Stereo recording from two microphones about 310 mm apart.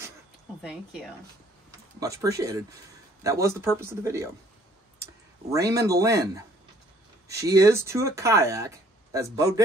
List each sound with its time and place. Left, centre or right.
0.6 s speech: centre
5.5 s speech: centre